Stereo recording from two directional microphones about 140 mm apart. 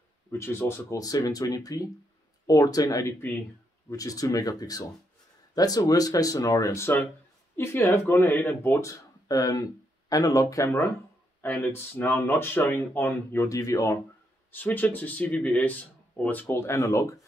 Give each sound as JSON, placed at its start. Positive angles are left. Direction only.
{"t": 0.3, "sound": "speech", "side_deg": 15}
{"t": 3.9, "sound": "speech", "side_deg": 25}
{"t": 14.5, "sound": "speech", "side_deg": 10}